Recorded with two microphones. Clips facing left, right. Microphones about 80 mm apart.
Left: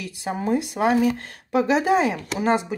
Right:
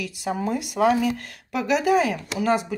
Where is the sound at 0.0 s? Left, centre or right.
Left.